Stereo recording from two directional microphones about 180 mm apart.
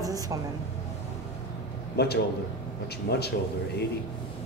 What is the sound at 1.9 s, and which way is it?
Speech, 65° left (ahead or behind).